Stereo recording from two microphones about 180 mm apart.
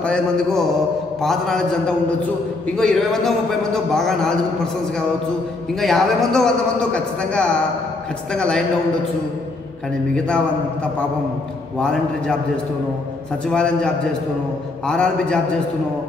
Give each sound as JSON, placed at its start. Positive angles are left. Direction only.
{"t": 0.0, "sound": "a man's voice", "side_deg": 5}
{"t": 5.8, "sound": "a man's voice", "side_deg": 0}
{"t": 10.1, "sound": "a man's voice", "side_deg": 5}
{"t": 13.5, "sound": "a man's voice", "side_deg": 5}